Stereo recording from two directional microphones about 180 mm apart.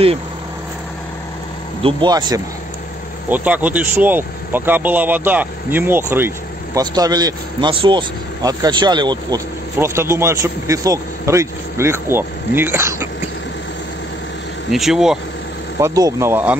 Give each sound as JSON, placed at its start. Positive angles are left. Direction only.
{"t": 1.8, "sound": "speech", "side_deg": -30}
{"t": 3.3, "sound": "speech", "side_deg": -10}
{"t": 14.7, "sound": "speech", "side_deg": 0}
{"t": 15.8, "sound": "speech", "side_deg": -20}